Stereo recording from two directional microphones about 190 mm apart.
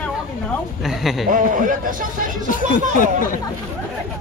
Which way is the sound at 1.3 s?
45° right (ahead or behind).